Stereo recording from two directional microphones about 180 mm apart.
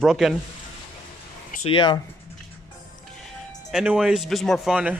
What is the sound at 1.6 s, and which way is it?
Speech, 25° left (ahead or behind).